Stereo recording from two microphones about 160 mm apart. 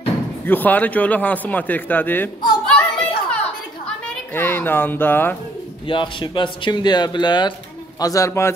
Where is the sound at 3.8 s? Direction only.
15° left (ahead or behind).